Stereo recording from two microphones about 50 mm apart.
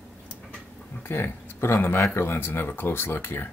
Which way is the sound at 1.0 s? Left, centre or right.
Left.